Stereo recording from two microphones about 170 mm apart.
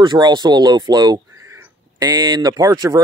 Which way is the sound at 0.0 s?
25° right (ahead or behind).